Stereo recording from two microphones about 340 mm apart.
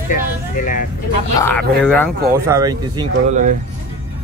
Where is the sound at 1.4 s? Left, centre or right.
Centre.